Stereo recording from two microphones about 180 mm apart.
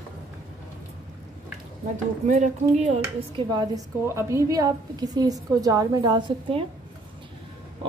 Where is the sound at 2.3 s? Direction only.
40° right (ahead or behind).